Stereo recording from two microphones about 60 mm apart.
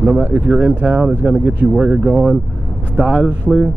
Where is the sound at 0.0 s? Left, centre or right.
Right.